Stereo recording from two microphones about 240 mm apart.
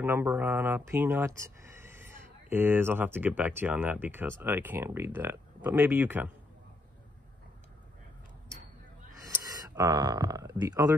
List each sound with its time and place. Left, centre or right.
0.0 s speech: centre
9.1 s speech: centre